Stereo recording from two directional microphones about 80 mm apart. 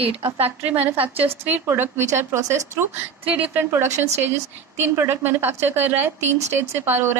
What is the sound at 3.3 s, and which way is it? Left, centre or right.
A woman's voice, right.